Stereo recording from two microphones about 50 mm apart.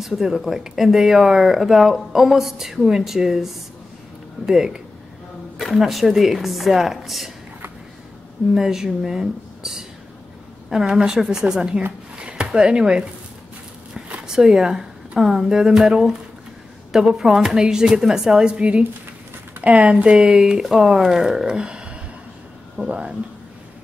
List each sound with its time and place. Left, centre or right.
0.0 s speech: centre
8.5 s speech: centre
12.2 s a sound: right
12.4 s speech: centre
14.2 s a woman's voice: centre
18.6 s speech: right
20.2 s speech: centre; by 23.1 s right